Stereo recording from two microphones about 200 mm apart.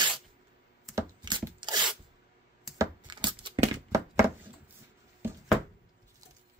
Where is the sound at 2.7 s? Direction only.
20° right (ahead or behind).